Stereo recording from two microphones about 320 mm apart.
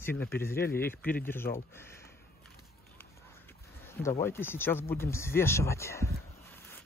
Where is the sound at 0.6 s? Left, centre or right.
Left.